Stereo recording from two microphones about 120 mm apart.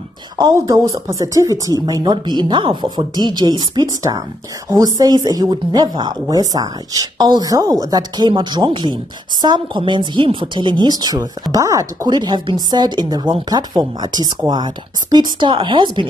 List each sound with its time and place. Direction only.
0.6 s speech: 30° right (ahead or behind)